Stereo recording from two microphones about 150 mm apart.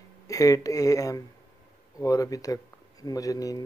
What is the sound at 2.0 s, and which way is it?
Speech, 25° left (ahead or behind).